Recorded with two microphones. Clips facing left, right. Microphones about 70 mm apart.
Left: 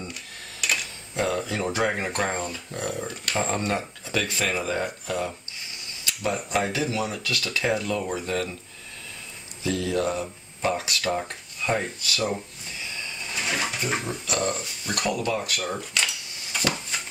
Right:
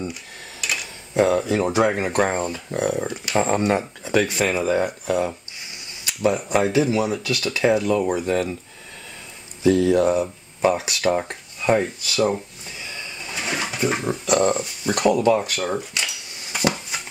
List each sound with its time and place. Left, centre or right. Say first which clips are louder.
0.1 s a sound: right 3 dB; centre
1.1 s a sound: right 8 dB; right
1.5 s speech: right 6 dB; centre
3.3 s speech: right 7 dB; right
9.6 s speech: right 9 dB; right
13.3 s bird: right 2 dB; centre
14.4 s speech: right 8 dB; right
15.8 s speech: even; centre
16.9 s a sound: right 2 dB; centre